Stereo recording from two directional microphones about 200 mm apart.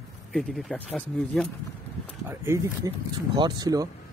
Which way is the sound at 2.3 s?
15° right (ahead or behind).